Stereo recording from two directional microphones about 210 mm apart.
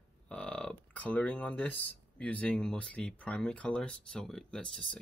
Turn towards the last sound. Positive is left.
turn(degrees=5)  # may be behind; listen again after turning